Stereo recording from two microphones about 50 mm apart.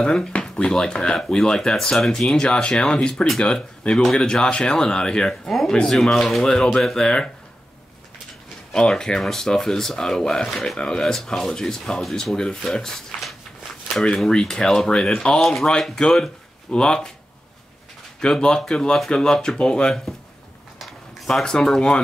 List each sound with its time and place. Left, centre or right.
0.0 s speech: centre
8.7 s speech: centre
14.3 s speech: centre
15.4 s speech: centre
16.0 s speech: centre
18.2 s speech: centre
20.8 s a sound: centre